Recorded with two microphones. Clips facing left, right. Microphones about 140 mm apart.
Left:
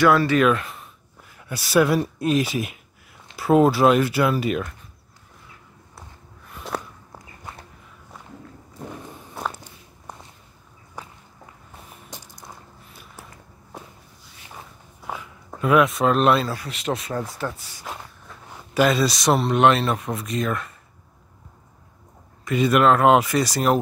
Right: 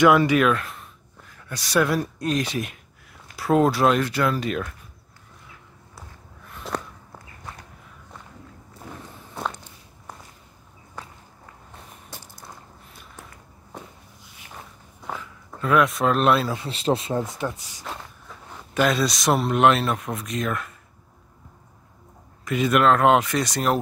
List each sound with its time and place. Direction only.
0.0 s speech: 15° right (ahead or behind)
0.4 s speech: centre (ahead or behind)
6.5 s walk: 5° left (ahead or behind)
9.3 s walk: 5° left (ahead or behind)
14.5 s a sound: 5° left (ahead or behind)
16.5 s speech: 30° right (ahead or behind)
18.7 s speech: centre (ahead or behind)
22.4 s speech: centre (ahead or behind)